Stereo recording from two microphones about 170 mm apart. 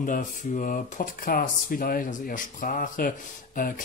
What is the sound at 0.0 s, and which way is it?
Speech, 50° left (ahead or behind).